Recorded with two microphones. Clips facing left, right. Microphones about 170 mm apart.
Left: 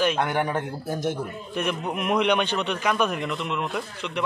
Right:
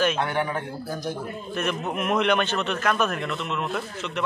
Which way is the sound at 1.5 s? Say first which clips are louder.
Even; 10° left (ahead or behind).